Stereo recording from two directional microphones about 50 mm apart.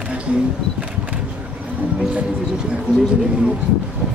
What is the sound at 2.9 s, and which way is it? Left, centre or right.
Speech, centre.